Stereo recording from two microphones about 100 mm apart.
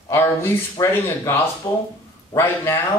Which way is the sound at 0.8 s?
40° left (ahead or behind).